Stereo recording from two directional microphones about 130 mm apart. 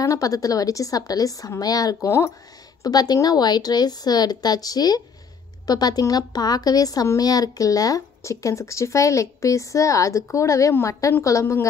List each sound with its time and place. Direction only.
0.0 s a woman's voice: 25° left (ahead or behind)